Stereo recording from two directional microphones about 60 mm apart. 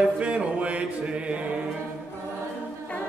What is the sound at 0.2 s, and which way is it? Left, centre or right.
Music, right.